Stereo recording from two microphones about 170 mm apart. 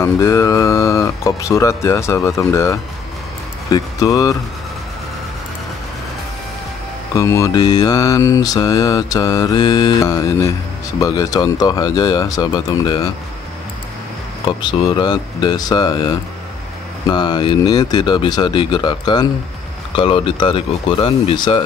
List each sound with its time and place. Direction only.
0.0 s speech: 20° left (ahead or behind)
3.7 s mantra: 20° left (ahead or behind)
7.2 s mantra: 20° left (ahead or behind)
14.7 s mantra: 25° left (ahead or behind)
20.0 s speech: 30° left (ahead or behind)